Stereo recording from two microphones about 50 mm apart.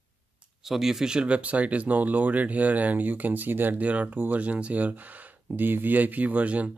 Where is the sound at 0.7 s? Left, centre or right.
Centre.